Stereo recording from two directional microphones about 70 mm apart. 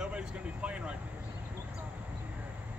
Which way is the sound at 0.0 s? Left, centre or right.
Centre.